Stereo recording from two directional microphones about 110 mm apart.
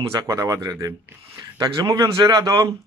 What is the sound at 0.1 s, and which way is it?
A man's voice, 30° right (ahead or behind).